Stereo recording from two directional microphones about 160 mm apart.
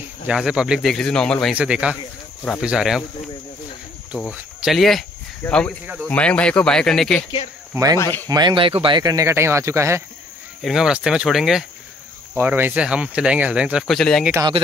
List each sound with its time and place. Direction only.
0.3 s speech: 5° right (ahead or behind)
1.5 s speech: 5° right (ahead or behind)
4.3 s speech: 5° right (ahead or behind)
7.7 s speech: 20° right (ahead or behind)
8.0 s speech: 10° left (ahead or behind)
8.3 s speech: 25° right (ahead or behind)
10.6 s speech: 5° right (ahead or behind)
12.4 s speech: 15° right (ahead or behind); by 14.2 s 5° left (ahead or behind)